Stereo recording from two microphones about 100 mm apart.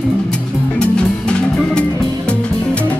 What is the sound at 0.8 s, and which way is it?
Music, 10° left (ahead or behind).